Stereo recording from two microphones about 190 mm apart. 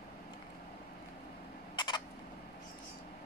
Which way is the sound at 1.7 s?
25° left (ahead or behind).